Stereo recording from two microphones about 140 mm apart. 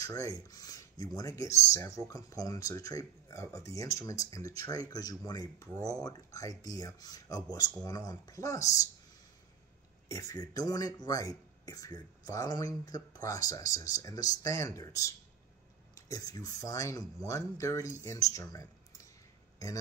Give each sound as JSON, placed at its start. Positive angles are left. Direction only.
{"t": 0.0, "sound": "speech", "side_deg": 25}
{"t": 10.0, "sound": "speech", "side_deg": 25}